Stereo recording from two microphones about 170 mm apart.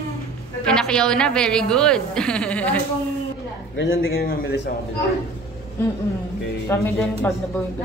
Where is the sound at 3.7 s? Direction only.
80° left.